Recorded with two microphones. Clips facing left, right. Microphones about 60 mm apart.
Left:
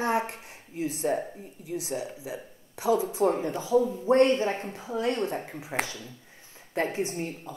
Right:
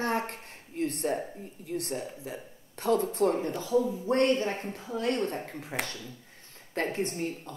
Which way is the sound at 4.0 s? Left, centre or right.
Left.